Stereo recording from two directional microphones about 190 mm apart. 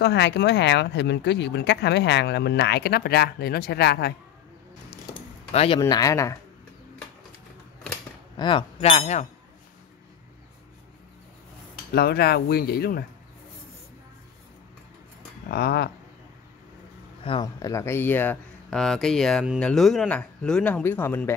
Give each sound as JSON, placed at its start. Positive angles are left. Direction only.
{"t": 0.0, "sound": "speech", "side_deg": 60}
{"t": 5.5, "sound": "speech", "side_deg": 35}
{"t": 5.8, "sound": "speech", "side_deg": 20}
{"t": 8.4, "sound": "speech", "side_deg": 25}
{"t": 11.9, "sound": "speech", "side_deg": 55}
{"t": 15.4, "sound": "speech", "side_deg": 55}
{"t": 17.2, "sound": "speech", "side_deg": 25}